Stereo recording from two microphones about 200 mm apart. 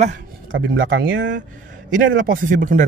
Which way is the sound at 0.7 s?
65° right (ahead or behind).